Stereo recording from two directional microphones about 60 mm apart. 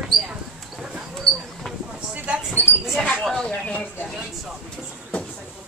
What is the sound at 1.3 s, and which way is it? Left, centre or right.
Mouse, centre.